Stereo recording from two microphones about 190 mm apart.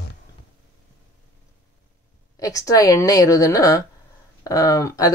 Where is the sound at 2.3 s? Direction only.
15° left (ahead or behind).